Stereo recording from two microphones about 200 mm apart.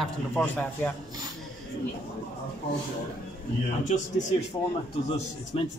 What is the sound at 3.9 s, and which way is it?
Speech, 35° left (ahead or behind).